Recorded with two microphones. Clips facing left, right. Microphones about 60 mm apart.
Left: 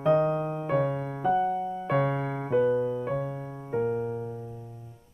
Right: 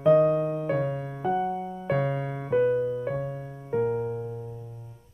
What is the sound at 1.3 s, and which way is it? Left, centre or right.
Music, centre.